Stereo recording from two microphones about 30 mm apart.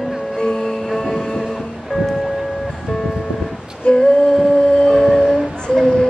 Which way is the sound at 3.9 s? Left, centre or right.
Left.